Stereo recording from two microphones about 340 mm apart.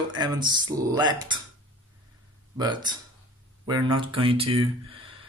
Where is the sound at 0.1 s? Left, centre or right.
Centre.